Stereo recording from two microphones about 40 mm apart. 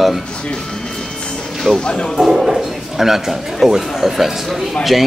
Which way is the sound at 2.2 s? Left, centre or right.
Centre.